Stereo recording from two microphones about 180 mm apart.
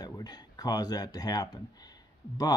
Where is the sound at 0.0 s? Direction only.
20° left (ahead or behind).